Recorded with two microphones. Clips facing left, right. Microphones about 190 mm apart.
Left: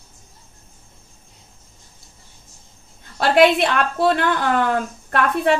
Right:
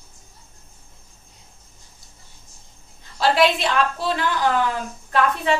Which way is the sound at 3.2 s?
55° left (ahead or behind).